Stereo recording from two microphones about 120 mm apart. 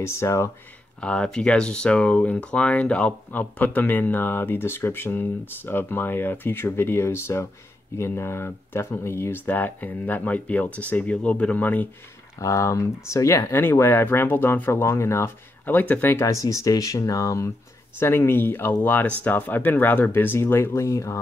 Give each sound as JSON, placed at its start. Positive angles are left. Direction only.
{"t": 0.0, "sound": "speech", "side_deg": 25}
{"t": 1.0, "sound": "speech", "side_deg": 10}
{"t": 12.4, "sound": "speech", "side_deg": 25}